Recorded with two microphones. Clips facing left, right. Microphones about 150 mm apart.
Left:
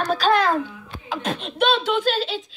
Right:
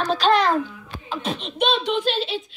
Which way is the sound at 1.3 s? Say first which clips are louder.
Even; 50° left (ahead or behind).